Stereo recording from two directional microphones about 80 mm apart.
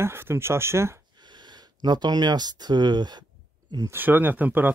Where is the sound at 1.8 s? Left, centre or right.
Right.